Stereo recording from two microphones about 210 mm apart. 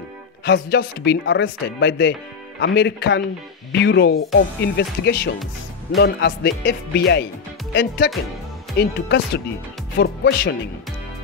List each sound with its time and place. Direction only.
0.5 s speech: 50° left (ahead or behind)